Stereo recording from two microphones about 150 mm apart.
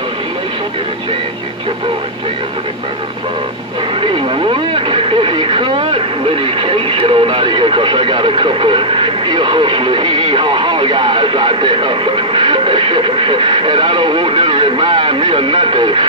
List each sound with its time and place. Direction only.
4.0 s speech: 35° right (ahead or behind)